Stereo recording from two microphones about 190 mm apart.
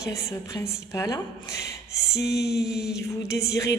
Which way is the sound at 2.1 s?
60° left (ahead or behind).